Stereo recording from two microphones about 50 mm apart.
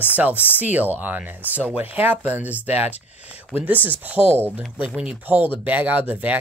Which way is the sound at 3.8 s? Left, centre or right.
Right.